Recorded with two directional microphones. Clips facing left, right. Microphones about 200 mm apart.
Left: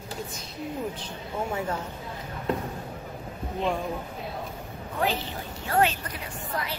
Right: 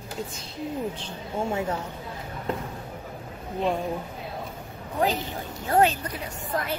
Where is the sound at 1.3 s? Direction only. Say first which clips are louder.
Right 2 dB; 20° right (ahead or behind).